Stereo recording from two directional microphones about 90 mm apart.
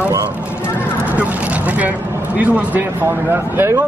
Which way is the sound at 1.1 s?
15° right (ahead or behind).